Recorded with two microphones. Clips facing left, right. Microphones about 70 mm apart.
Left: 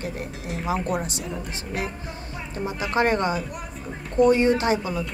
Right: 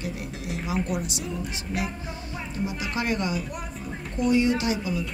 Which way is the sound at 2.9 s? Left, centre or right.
Left.